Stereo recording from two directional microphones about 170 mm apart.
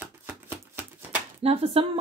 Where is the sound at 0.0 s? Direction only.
15° right (ahead or behind).